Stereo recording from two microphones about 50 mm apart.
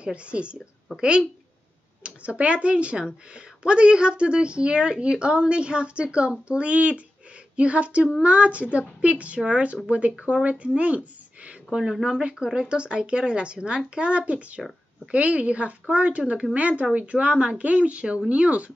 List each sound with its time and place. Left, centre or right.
0.0 s speech: right
11.4 s a sound: centre
12.0 s speech: centre